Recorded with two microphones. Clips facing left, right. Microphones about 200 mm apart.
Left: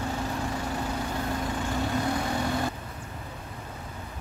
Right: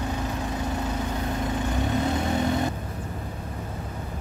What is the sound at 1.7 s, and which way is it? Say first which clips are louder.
Vehicle: right 1 dB; 20° right (ahead or behind).